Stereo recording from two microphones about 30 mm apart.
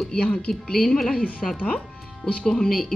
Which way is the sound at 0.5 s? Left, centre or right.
Left.